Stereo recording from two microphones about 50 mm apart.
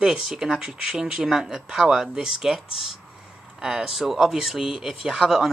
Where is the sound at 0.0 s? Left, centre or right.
Centre.